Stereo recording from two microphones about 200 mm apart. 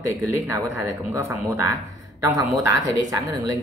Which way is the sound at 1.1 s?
10° right (ahead or behind).